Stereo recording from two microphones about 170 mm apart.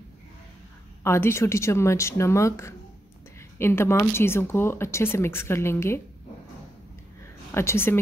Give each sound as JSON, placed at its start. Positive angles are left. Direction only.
{"t": 1.0, "sound": "speech", "side_deg": 15}
{"t": 7.5, "sound": "speech", "side_deg": 15}